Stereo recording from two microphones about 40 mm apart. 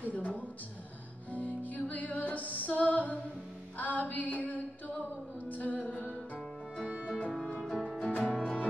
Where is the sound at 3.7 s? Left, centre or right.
Left.